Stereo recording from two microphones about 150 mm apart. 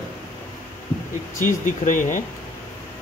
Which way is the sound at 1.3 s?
60° left (ahead or behind).